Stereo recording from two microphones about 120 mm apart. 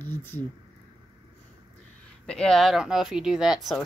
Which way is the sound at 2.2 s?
5° left (ahead or behind).